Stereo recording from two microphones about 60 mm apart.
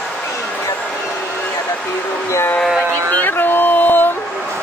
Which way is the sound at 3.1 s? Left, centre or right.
Left.